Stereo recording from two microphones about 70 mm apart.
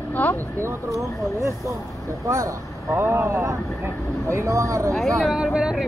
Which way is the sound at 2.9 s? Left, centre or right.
Right.